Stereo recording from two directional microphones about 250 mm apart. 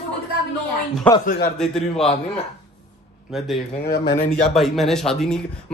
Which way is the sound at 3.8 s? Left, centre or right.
Left.